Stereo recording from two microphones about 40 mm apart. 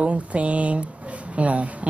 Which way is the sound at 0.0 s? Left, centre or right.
Right.